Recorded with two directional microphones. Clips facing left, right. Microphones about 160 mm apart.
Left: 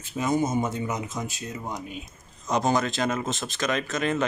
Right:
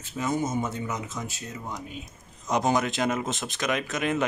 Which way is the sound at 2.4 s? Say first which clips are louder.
Even; 15° right (ahead or behind).